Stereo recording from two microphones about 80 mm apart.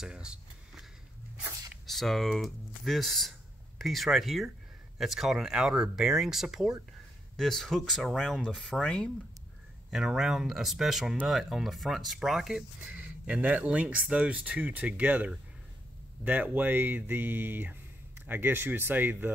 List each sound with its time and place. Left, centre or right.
0.0 s a sound: centre
1.9 s speech: centre
7.3 s speech: centre
9.8 s speech: centre
12.8 s speech: right
16.5 s speech: right